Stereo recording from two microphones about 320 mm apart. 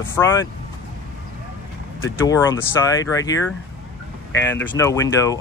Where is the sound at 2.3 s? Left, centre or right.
Centre.